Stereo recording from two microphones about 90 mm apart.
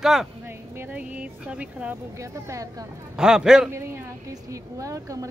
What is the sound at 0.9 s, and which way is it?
Speech, 15° right (ahead or behind).